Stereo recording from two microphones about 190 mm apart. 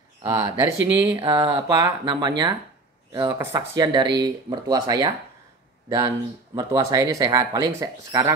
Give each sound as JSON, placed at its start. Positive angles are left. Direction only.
{"t": 0.2, "sound": "speech", "side_deg": -20}